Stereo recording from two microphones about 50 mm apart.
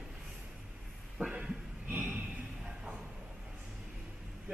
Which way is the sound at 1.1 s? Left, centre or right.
Centre.